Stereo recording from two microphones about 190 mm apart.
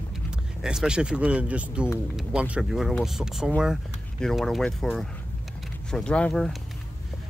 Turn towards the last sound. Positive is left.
turn(degrees=5)  # may be behind; listen again after turning